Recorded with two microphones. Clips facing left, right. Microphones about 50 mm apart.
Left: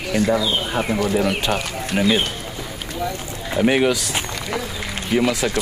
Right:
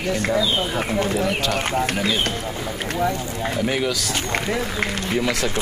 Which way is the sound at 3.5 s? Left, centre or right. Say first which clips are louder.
Left 7 dB; left.